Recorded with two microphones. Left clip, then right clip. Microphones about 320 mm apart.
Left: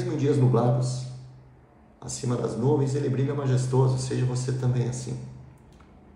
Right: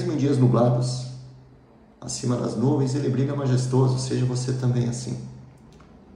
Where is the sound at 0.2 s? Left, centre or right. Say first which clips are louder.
Right 2 dB; centre.